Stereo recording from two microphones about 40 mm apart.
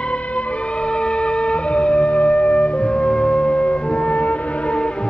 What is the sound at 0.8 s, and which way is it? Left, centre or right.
Music, left.